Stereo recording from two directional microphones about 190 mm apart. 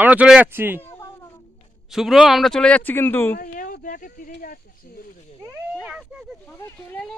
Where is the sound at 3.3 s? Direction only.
45° left (ahead or behind).